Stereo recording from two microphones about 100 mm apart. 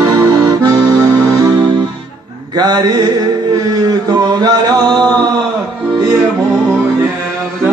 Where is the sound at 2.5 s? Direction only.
45° right (ahead or behind).